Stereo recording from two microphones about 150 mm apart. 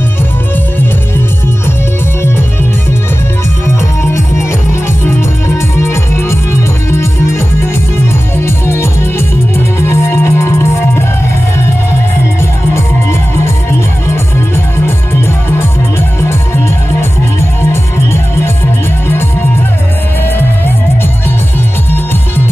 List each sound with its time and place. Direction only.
5.8 s music: 20° left (ahead or behind)
8.5 s music: 15° left (ahead or behind)
16.2 s music: 15° left (ahead or behind)